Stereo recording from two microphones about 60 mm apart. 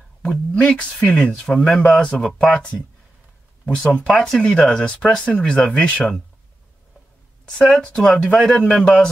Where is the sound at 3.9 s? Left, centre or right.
Centre.